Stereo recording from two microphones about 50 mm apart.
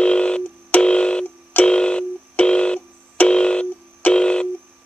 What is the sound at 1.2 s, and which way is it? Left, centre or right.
Telephone, left.